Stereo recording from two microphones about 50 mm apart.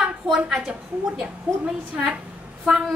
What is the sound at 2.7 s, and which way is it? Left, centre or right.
Speech, centre.